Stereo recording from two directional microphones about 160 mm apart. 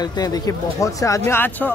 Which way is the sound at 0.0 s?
25° left (ahead or behind).